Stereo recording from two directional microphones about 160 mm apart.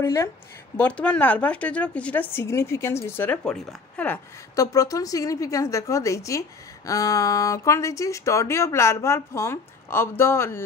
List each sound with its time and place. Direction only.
0.0 s speech: 20° left (ahead or behind)
0.7 s speech: 10° left (ahead or behind)